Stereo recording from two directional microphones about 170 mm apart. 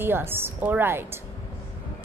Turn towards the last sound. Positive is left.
turn(degrees=-15)  # may be behind; listen again after turning